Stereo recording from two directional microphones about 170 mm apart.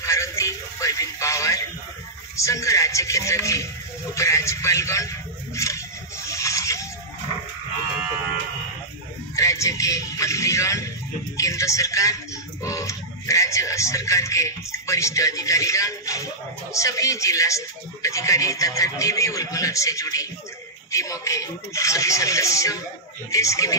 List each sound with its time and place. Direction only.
0.0 s music: 20° left (ahead or behind)
4.1 s a sound: 20° left (ahead or behind)
9.3 s music: 20° left (ahead or behind)
16.7 s a woman's voice: 20° left (ahead or behind)
20.9 s music: 20° left (ahead or behind)
23.3 s speech: 20° left (ahead or behind)